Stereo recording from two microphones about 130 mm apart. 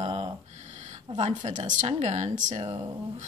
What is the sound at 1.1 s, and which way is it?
Speech, 60° right (ahead or behind).